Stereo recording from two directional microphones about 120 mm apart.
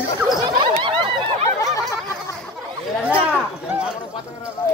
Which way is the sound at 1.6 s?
25° left (ahead or behind).